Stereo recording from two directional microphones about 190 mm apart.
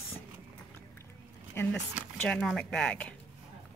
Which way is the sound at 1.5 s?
10° left (ahead or behind).